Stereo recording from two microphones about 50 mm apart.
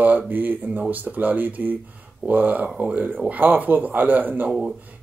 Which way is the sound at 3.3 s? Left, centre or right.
Right.